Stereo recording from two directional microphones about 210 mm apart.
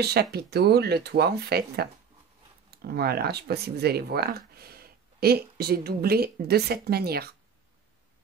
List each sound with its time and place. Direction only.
0.0 s speech: 50° right (ahead or behind)